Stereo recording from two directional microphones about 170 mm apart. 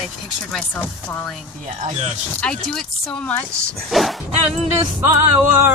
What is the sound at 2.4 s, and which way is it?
Speech, 5° left (ahead or behind).